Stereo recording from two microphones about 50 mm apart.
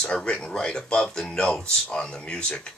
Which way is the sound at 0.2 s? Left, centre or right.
Centre.